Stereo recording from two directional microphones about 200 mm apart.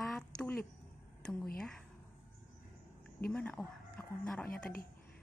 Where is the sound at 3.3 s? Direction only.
5° left (ahead or behind).